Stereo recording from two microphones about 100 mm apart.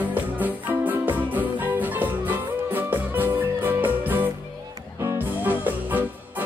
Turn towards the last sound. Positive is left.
turn(degrees=-15)  # may be behind; listen again after turning